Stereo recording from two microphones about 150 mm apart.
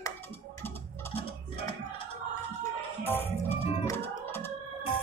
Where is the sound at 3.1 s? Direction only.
15° left (ahead or behind).